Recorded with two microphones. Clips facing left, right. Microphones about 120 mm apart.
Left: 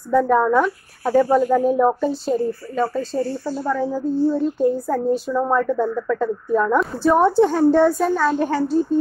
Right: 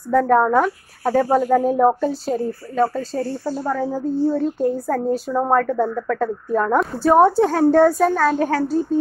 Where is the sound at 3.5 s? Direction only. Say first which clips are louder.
Even; 30° right (ahead or behind).